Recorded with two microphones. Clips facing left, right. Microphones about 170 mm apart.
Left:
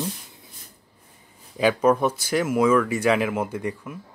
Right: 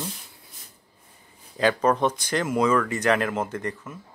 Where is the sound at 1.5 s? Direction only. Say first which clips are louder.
Left 2 dB; 10° left (ahead or behind).